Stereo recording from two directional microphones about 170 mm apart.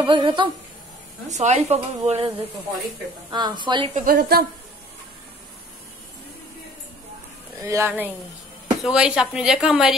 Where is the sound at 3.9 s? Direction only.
55° right (ahead or behind).